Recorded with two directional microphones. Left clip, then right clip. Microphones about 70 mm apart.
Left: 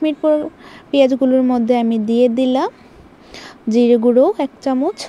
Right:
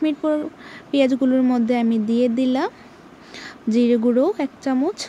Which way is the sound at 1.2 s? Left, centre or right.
Left.